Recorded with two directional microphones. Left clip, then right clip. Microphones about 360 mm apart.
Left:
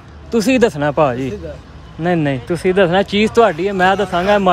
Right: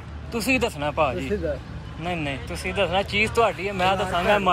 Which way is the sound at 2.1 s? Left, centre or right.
Left.